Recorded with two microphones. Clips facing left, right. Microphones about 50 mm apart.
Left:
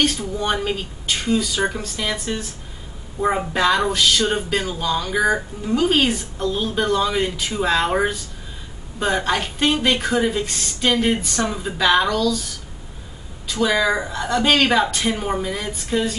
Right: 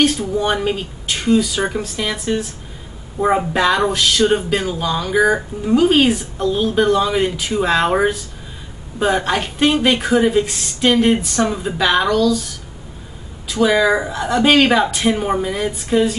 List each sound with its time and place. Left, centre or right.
0.2 s speech: centre
13.5 s speech: centre